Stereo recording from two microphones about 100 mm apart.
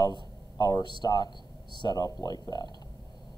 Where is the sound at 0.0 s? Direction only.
45° left (ahead or behind).